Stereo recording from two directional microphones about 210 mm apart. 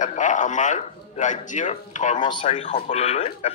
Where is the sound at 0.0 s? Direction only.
35° left (ahead or behind).